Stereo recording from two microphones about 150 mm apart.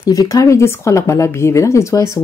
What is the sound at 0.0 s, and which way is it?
Speech, 25° left (ahead or behind).